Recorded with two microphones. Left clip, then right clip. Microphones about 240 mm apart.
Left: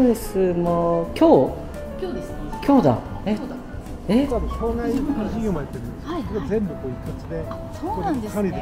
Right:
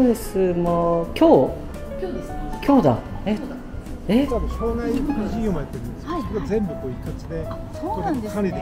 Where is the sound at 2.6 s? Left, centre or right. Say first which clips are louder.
Even; centre.